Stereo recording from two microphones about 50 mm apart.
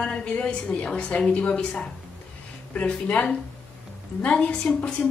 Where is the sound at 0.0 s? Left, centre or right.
Left.